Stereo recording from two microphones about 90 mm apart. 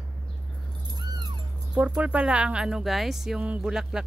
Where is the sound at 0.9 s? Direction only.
50° right (ahead or behind).